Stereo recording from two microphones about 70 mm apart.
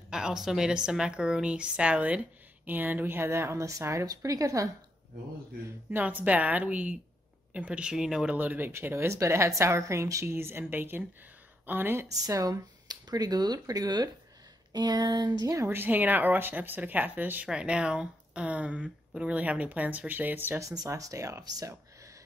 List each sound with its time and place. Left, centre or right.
0.1 s a woman's voice: centre; by 4.6 s right
5.9 s a woman's voice: right
8.4 s speech: right
10.2 s speech: right
12.1 s speech: right
15.7 s speech: right
20.6 s speech: right